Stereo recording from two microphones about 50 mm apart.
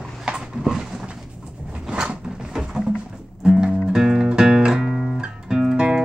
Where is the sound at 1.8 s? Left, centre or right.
Centre.